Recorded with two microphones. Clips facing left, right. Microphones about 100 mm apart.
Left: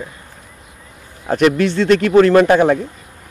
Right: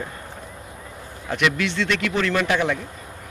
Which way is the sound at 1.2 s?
40° left (ahead or behind).